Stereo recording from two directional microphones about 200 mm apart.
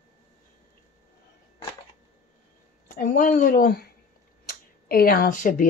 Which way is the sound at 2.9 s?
45° left (ahead or behind).